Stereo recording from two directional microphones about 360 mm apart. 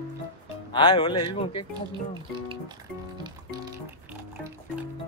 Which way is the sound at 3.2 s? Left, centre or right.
Centre.